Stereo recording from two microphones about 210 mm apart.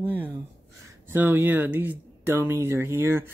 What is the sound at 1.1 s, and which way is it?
Speech, 10° right (ahead or behind).